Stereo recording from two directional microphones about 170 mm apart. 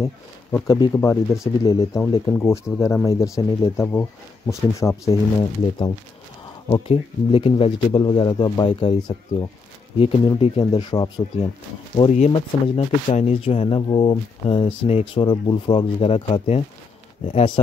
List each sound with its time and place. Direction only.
0.0 s speech: 15° left (ahead or behind)
6.9 s speech: 35° left (ahead or behind)
11.9 s speech: 35° left (ahead or behind)